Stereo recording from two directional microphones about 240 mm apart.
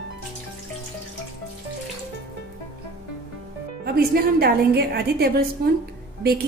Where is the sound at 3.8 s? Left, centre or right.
Right.